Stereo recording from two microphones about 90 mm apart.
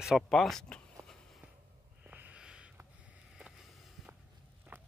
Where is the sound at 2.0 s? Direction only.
20° right (ahead or behind).